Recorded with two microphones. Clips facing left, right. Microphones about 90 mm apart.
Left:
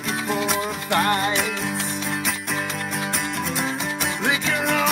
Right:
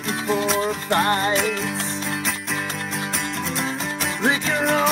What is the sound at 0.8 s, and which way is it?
Music, 30° right (ahead or behind).